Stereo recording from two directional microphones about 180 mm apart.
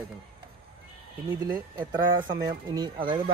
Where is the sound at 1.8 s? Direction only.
25° right (ahead or behind).